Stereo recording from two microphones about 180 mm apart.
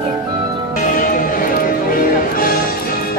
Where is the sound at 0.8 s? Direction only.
50° left (ahead or behind).